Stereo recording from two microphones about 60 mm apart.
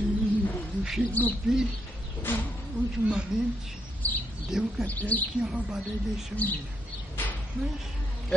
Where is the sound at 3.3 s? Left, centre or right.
Centre.